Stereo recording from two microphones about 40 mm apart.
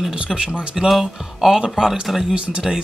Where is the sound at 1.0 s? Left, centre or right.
Centre.